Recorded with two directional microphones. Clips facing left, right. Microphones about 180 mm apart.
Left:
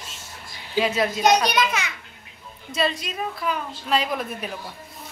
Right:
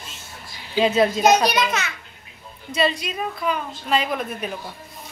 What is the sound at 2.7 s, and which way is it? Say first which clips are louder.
A woman's voice: right 3 dB; centre (ahead or behind).